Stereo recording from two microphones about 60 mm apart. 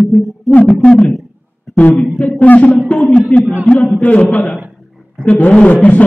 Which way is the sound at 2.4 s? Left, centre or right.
Left.